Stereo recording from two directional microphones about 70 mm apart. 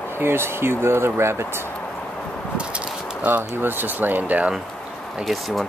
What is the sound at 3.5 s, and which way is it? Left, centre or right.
Speech, right.